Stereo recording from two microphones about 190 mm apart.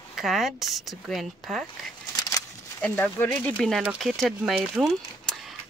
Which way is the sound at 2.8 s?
10° left (ahead or behind).